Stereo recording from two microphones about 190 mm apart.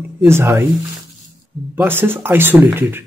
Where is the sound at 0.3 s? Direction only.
15° right (ahead or behind).